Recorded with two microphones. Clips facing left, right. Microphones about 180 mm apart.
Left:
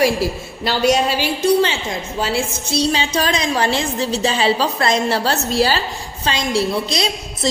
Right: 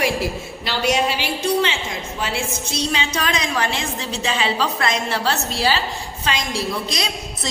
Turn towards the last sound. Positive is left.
turn(degrees=30)  # may be behind; listen again after turning